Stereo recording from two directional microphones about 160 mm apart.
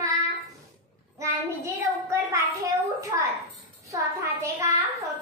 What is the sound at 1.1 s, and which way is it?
Child singing, 20° right (ahead or behind).